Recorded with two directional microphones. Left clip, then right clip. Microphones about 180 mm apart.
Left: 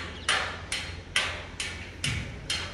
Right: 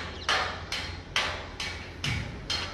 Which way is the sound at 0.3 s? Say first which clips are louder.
Even; 45° right (ahead or behind).